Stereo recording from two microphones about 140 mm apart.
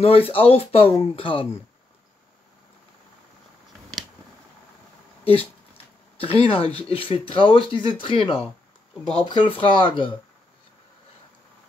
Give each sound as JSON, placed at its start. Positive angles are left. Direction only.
{"t": 0.0, "sound": "speech", "side_deg": 45}
{"t": 5.2, "sound": "speech", "side_deg": 45}